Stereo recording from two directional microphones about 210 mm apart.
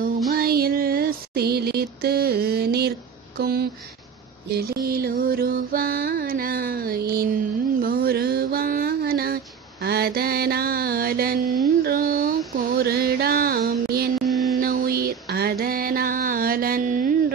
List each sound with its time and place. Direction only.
0.3 s music: 45° right (ahead or behind)
3.3 s speech: 50° right (ahead or behind)
4.6 s music: 45° right (ahead or behind)
7.8 s mantra: 45° right (ahead or behind)
14.2 s mantra: centre (ahead or behind)
14.6 s mantra: 45° right (ahead or behind)